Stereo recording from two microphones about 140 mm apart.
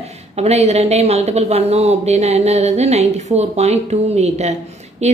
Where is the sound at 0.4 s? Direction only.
50° right (ahead or behind).